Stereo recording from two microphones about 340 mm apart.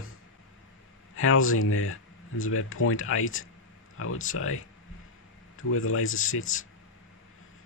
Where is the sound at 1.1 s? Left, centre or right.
Left.